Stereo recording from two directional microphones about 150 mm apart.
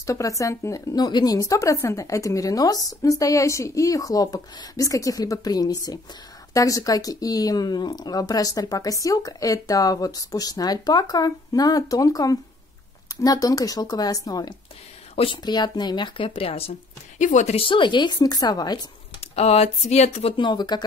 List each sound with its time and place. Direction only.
0.0 s speech: 20° left (ahead or behind); by 16.7 s 40° left (ahead or behind)
17.2 s speech: 55° left (ahead or behind); by 18.8 s 25° left (ahead or behind)
19.3 s speech: 45° left (ahead or behind); by 20.8 s 30° left (ahead or behind)